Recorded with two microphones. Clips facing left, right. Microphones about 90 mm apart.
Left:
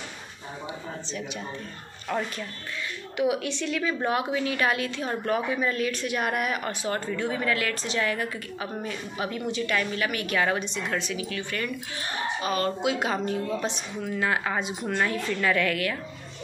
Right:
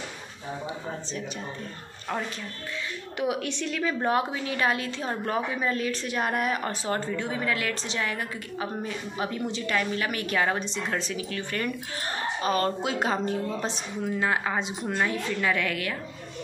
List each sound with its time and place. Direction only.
3.2 s a woman's voice: 45° right (ahead or behind)
7.1 s a woman's voice: 20° right (ahead or behind)